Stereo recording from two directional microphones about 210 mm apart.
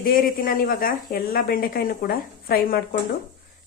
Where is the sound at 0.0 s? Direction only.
45° left (ahead or behind).